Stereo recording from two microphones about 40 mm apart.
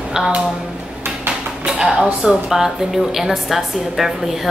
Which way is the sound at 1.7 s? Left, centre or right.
Right.